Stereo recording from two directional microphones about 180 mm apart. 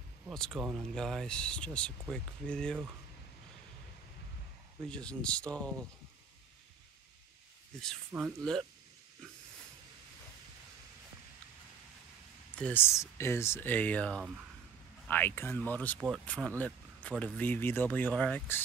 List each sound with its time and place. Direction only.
0.3 s speech: centre (ahead or behind)
4.8 s speech: 5° left (ahead or behind)
8.1 s speech: 10° right (ahead or behind)
12.5 s speech: 10° left (ahead or behind)